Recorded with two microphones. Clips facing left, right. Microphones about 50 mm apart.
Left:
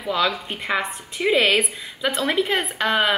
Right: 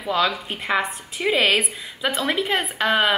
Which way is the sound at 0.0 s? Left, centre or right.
Centre.